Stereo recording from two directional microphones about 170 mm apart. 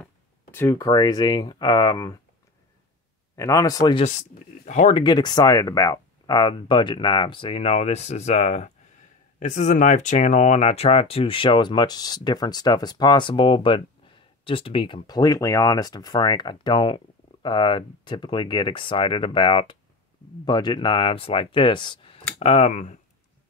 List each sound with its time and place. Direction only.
0.0 s speech: 15° left (ahead or behind)
3.3 s speech: 20° left (ahead or behind)
4.0 s speech: 45° left (ahead or behind)
5.0 s speech: 25° left (ahead or behind); by 22.9 s 45° left (ahead or behind)